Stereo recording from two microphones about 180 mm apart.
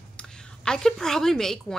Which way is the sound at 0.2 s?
5° left (ahead or behind).